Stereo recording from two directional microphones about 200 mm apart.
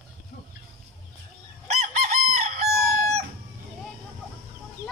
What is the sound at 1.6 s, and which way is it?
Chicken, 35° right (ahead or behind).